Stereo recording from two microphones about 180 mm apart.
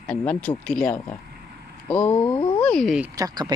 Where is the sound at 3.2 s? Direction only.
25° right (ahead or behind).